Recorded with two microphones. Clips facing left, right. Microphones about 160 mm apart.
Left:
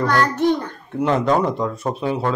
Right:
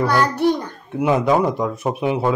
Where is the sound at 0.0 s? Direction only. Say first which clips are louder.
Right 1 dB; 10° right (ahead or behind).